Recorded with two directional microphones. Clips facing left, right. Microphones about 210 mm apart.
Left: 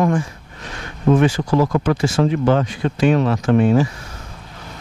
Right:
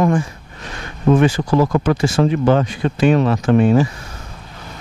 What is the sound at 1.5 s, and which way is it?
Speech, 30° right (ahead or behind).